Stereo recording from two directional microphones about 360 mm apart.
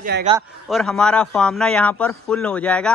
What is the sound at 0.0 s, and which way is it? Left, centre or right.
Speech, right.